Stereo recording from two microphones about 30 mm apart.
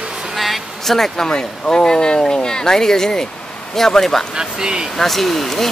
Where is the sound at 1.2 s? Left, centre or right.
Left.